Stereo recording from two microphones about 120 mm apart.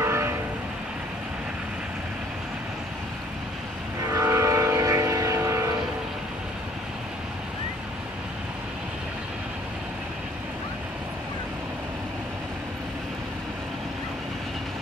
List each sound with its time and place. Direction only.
0.0 s train: 20° right (ahead or behind)
4.0 s train: 25° right (ahead or behind)